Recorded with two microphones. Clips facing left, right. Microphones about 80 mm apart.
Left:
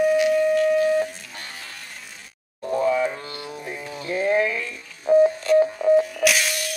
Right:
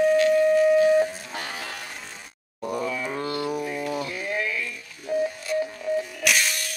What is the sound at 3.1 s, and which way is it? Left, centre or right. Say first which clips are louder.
Music: right 7 dB; right.